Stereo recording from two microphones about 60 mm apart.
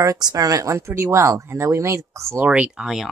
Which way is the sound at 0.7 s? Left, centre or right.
Right.